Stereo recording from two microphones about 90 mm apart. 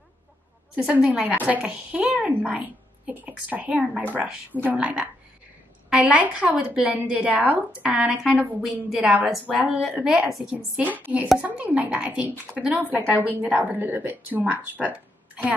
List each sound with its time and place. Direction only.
0.8 s a woman's voice: 15° right (ahead or behind)